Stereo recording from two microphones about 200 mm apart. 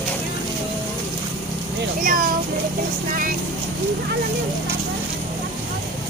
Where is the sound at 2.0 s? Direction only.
45° right (ahead or behind).